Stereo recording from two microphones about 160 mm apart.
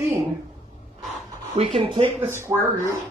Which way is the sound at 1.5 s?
35° right (ahead or behind).